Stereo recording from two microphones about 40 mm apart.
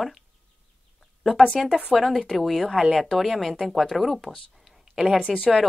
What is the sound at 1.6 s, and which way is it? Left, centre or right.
A woman's voice, centre.